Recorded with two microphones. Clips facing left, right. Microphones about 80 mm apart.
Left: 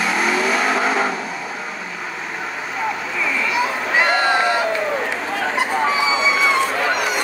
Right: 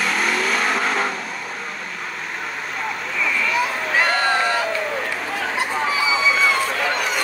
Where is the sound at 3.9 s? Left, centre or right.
Centre.